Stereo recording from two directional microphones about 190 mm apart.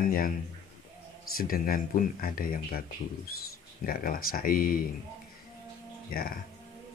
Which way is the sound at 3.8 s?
50° left (ahead or behind).